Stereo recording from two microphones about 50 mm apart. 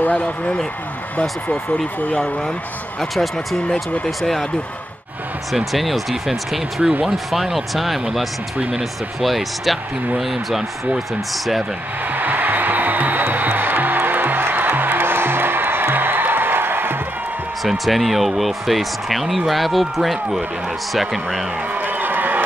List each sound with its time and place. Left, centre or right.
0.0 s speech: left
2.0 s speech: left
3.6 s speech: left
4.2 s speech: centre
5.5 s speech: centre
12.1 s music: right
17.6 s speech: centre
21.7 s a sound: right